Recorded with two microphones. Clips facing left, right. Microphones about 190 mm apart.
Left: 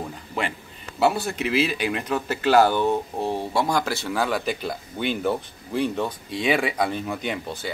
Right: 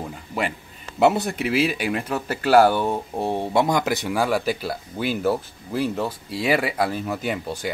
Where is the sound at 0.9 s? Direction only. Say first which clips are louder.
Right 3 dB; 20° right (ahead or behind).